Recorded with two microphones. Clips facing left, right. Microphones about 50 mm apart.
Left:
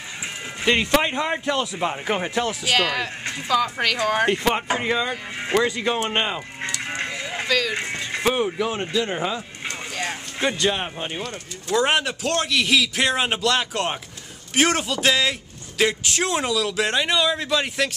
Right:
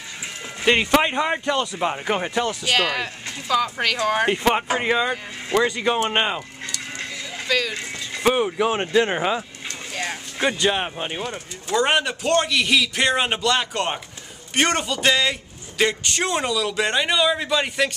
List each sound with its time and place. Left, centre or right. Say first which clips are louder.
0.7 s speech: right 2 dB; centre
6.6 s sheep: left 4 dB; left
7.4 s speech: even; centre
7.7 s music: left 4 dB; left
8.2 s speech: right 3 dB; centre
8.5 s speech: right 4 dB; right
8.9 s speech: right 6 dB; right
9.9 s speech: right 3 dB; centre